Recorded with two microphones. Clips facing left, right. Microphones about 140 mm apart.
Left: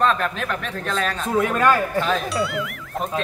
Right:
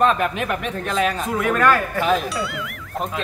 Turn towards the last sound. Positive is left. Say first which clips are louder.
# even
turn(degrees=0)  # may be behind; listen again after turning